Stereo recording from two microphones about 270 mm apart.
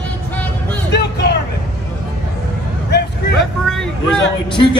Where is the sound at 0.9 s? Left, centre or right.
Left.